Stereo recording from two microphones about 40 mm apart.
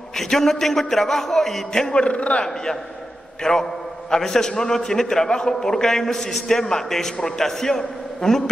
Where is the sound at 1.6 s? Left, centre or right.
Centre.